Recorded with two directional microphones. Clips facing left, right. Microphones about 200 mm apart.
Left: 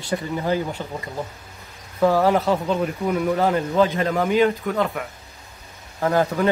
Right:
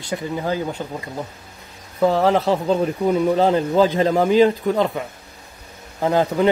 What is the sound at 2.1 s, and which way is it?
Speech, 25° right (ahead or behind).